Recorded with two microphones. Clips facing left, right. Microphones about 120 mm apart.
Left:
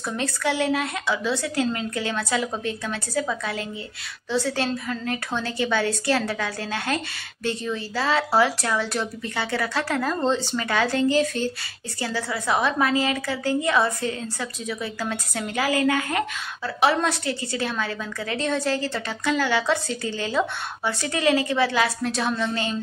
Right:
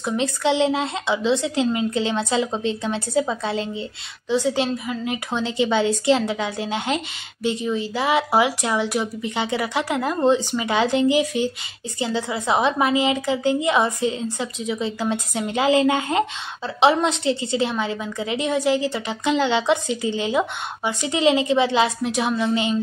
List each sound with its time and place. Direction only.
0.0 s a woman's voice: 20° right (ahead or behind)